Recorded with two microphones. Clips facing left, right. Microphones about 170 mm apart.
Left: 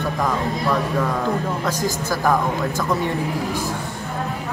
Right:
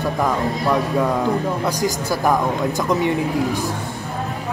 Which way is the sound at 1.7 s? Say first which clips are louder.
Right 2 dB; 15° right (ahead or behind).